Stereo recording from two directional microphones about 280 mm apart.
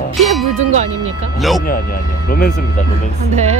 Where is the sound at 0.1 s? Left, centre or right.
Centre.